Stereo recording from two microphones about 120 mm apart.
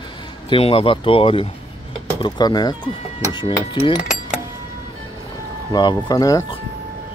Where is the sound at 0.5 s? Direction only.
50° left (ahead or behind); by 2.7 s 35° left (ahead or behind).